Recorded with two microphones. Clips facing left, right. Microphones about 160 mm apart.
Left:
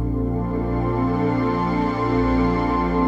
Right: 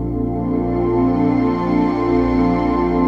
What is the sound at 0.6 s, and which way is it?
Music, 40° right (ahead or behind).